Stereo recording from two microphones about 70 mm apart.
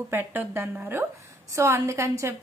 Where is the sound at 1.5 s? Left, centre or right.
Right.